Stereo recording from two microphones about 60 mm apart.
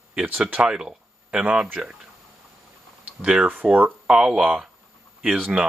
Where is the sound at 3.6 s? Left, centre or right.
Centre.